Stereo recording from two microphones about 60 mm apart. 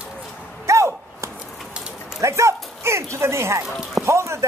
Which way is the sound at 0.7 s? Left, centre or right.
Right.